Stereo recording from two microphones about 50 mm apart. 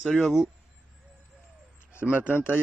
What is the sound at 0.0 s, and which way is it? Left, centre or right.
Speech, centre.